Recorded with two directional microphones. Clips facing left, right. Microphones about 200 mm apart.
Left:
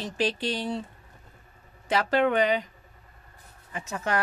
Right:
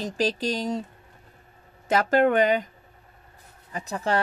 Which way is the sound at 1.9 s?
45° right (ahead or behind).